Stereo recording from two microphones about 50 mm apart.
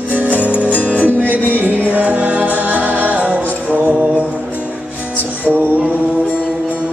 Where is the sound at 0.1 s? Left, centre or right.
Right.